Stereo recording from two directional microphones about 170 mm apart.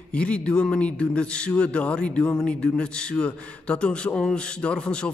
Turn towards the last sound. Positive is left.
turn(degrees=5)  # may be behind; listen again after turning